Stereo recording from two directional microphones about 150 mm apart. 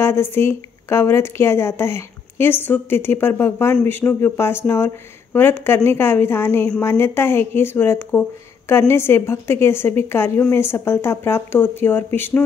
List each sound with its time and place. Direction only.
0.0 s speech: 15° left (ahead or behind)